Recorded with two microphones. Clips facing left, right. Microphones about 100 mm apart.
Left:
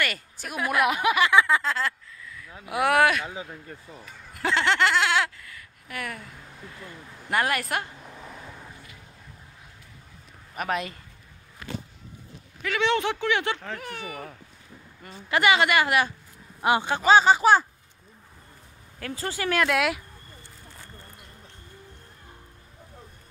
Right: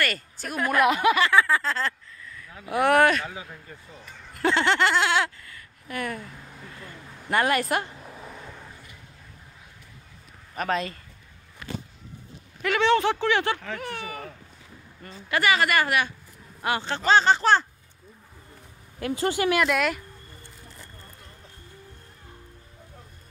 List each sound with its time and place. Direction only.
0.0 s speech: 10° left (ahead or behind)
4.4 s speech: centre (ahead or behind)
7.2 s a sound: 5° left (ahead or behind)
10.5 s speech: 10° left (ahead or behind)
12.8 s speech: 15° left (ahead or behind)
18.9 s speech: 25° right (ahead or behind)
19.5 s speech: centre (ahead or behind)